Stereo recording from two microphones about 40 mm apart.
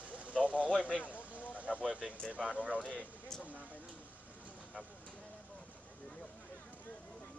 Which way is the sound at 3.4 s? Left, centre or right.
Right.